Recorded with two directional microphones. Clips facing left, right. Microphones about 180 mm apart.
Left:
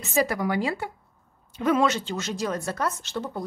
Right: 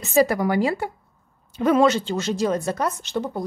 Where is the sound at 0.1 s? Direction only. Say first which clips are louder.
Right 6 dB; 35° right (ahead or behind).